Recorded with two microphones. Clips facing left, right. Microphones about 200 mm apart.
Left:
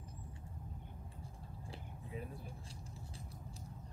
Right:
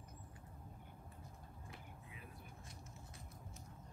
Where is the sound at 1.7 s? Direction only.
30° left (ahead or behind).